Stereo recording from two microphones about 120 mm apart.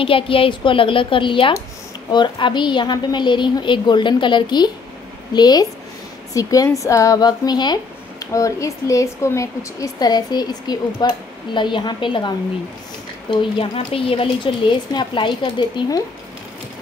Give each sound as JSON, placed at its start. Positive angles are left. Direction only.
{"t": 0.0, "sound": "a woman's voice", "side_deg": 50}
{"t": 13.3, "sound": "a woman's voice", "side_deg": 50}
{"t": 14.9, "sound": "speech", "side_deg": 40}